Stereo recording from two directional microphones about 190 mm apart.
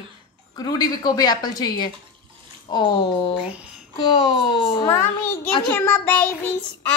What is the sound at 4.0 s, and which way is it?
Speech, 20° left (ahead or behind).